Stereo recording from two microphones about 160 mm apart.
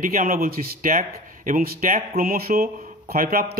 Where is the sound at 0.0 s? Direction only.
60° right (ahead or behind).